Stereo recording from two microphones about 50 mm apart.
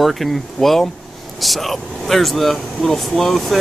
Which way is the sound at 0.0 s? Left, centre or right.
Centre.